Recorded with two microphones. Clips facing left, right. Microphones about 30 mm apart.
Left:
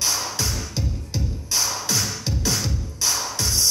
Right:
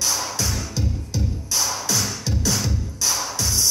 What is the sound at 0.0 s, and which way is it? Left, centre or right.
Music, centre.